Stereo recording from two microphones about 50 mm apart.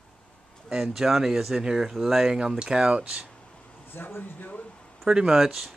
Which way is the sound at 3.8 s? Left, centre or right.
Left.